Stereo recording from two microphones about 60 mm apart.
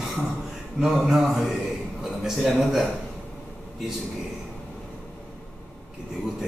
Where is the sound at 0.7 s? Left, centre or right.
Centre.